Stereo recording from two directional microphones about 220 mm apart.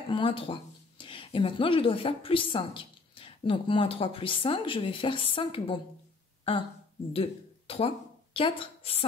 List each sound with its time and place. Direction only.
0.1 s speech: 25° left (ahead or behind)
7.1 s speech: 25° left (ahead or behind)